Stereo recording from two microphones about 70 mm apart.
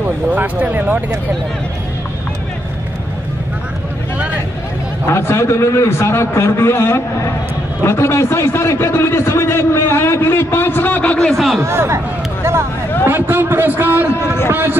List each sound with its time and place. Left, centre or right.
0.0 s a man's voice: right
5.0 s a man's voice: left
11.1 s a man's voice: centre
11.6 s speech: right
13.0 s a man's voice: right
14.2 s a man's voice: left
14.5 s a man's voice: right